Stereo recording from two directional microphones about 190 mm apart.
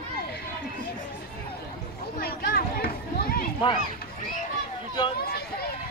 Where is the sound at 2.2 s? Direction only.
55° left (ahead or behind).